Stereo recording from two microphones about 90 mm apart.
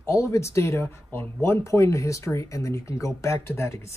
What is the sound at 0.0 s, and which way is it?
Speech, 35° left (ahead or behind).